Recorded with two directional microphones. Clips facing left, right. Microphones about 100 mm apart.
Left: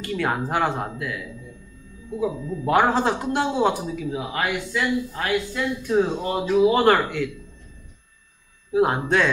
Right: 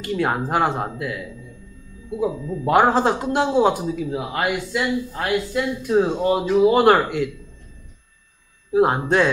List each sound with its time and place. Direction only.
0.1 s a man's voice: 15° right (ahead or behind)
2.2 s a man's voice: 10° right (ahead or behind)
6.7 s a man's voice: 15° right (ahead or behind)
8.7 s speech: 15° right (ahead or behind)